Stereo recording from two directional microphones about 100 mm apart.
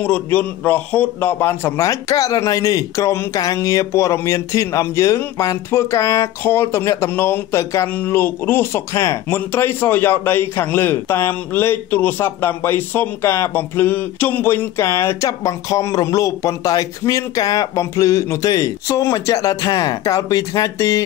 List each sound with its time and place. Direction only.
0.0 s speech: 15° left (ahead or behind); by 21.0 s 35° left (ahead or behind)